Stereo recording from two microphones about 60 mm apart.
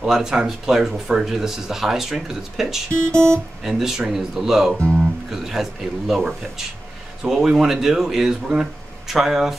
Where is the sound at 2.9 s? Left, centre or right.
Right.